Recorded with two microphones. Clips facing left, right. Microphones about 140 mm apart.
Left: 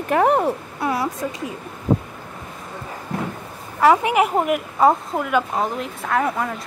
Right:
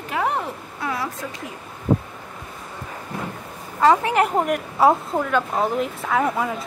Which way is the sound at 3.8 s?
15° left (ahead or behind).